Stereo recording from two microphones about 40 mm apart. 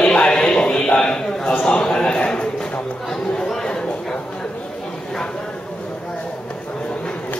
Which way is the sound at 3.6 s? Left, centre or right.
Centre.